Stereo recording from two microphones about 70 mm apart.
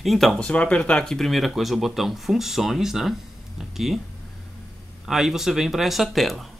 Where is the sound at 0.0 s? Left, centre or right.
Centre.